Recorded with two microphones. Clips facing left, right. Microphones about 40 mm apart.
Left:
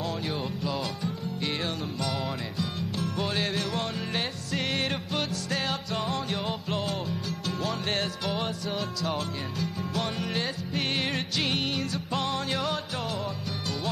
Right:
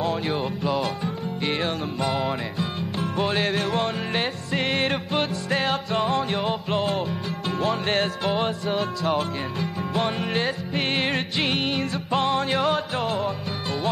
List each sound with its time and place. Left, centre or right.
0.0 s music: right
3.3 s music: centre
11.0 s music: centre
11.3 s music: right